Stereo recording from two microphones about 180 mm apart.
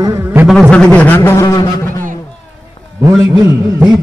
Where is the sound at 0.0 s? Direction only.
15° right (ahead or behind).